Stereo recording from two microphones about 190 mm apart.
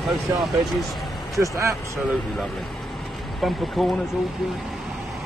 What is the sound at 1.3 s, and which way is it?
Speech, 15° right (ahead or behind).